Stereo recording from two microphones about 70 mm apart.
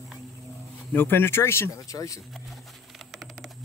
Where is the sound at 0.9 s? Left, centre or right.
Left.